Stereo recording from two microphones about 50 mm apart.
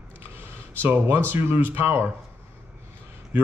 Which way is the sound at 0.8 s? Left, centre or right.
Right.